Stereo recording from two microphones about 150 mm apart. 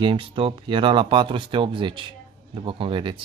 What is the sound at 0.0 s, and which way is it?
Speech, 35° right (ahead or behind).